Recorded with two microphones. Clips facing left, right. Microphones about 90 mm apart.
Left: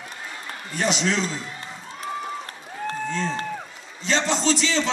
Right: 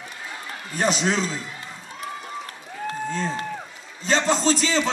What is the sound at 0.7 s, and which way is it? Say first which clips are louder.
Speech: right 1 dB; 40° right (ahead or behind).